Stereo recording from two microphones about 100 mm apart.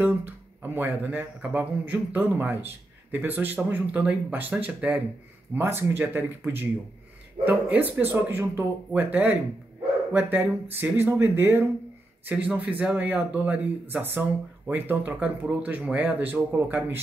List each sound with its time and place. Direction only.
0.0 s speech: 20° right (ahead or behind)